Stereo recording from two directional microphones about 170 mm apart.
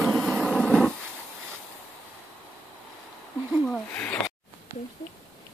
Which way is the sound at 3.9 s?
10° left (ahead or behind).